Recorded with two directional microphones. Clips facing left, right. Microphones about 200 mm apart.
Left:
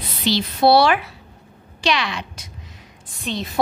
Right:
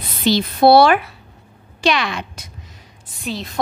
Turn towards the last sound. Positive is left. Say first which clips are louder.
# even
turn(degrees=0)  # may be behind; listen again after turning